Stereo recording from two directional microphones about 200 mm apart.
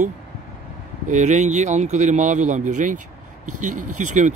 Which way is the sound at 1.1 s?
35° right (ahead or behind).